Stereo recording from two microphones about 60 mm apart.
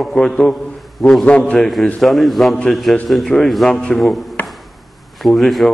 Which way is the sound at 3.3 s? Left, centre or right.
Centre.